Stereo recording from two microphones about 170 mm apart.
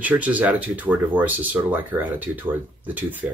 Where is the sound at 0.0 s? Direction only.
10° right (ahead or behind).